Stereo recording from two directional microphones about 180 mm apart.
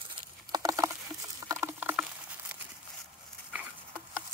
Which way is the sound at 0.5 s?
20° right (ahead or behind).